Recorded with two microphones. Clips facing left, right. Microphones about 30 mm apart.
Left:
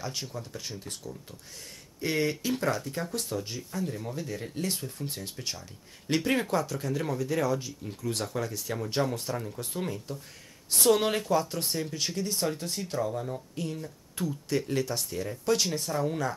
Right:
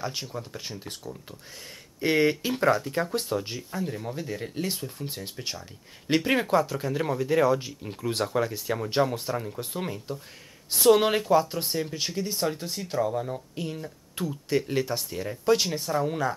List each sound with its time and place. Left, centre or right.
0.0 s speech: centre